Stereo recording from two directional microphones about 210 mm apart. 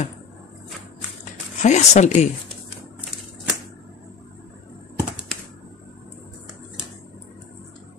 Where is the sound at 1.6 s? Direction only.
35° left (ahead or behind).